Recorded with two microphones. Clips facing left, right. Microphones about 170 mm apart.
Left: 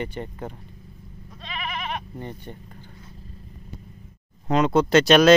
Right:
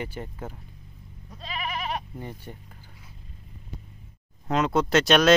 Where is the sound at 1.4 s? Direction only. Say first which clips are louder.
Even; 35° right (ahead or behind).